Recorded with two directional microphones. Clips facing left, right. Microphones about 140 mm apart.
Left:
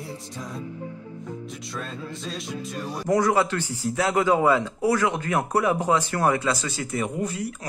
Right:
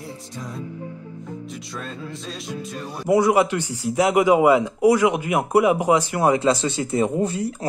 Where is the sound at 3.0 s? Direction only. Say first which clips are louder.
Right 4 dB; 15° right (ahead or behind).